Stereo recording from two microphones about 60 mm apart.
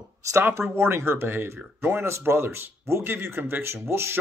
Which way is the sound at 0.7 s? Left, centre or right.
Right.